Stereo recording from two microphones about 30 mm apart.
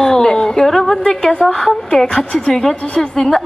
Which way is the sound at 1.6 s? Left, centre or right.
Centre.